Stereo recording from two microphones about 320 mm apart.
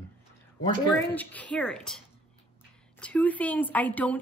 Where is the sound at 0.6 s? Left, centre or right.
Centre.